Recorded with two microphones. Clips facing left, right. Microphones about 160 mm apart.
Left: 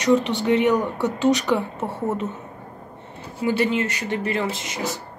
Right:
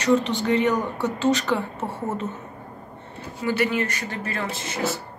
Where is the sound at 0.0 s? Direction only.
10° left (ahead or behind).